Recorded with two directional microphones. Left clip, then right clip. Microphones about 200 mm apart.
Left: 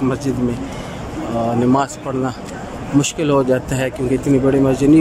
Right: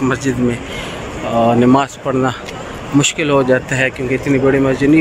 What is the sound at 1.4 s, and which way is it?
Speech, 5° left (ahead or behind).